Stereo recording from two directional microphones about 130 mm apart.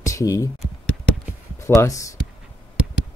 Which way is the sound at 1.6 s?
25° left (ahead or behind).